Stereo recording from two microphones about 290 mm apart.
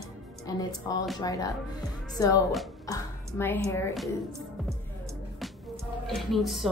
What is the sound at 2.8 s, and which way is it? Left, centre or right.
A woman's voice, centre.